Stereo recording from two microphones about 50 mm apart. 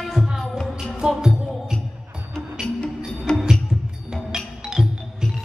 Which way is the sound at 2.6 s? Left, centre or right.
Centre.